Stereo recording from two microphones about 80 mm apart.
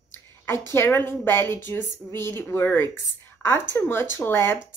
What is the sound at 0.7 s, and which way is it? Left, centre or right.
A woman's voice, left.